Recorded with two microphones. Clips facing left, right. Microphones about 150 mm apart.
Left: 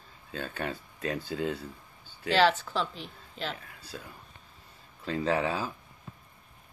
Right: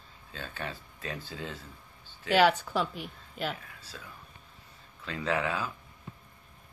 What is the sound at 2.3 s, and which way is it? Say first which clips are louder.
A woman's voice: right 1 dB; 15° right (ahead or behind).